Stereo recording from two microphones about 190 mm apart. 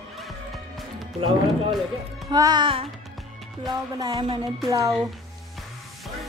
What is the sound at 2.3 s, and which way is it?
Speech, 20° right (ahead or behind).